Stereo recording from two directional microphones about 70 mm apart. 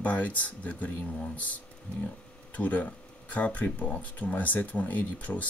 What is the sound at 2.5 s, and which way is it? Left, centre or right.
Speech, left.